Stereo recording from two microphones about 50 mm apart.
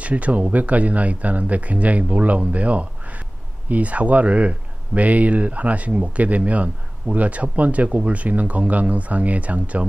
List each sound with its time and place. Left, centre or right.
0.0 s speech: right